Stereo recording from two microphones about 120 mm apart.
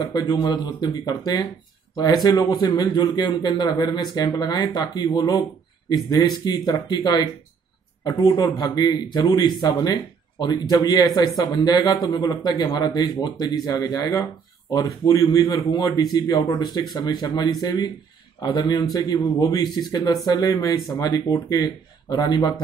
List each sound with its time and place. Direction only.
0.1 s a man's voice: 35° left (ahead or behind)